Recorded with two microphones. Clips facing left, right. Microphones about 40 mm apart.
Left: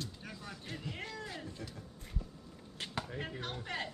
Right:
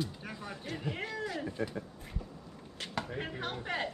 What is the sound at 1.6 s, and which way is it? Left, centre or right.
Speech, right.